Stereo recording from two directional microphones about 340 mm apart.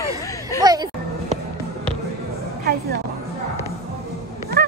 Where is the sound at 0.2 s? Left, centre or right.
Centre.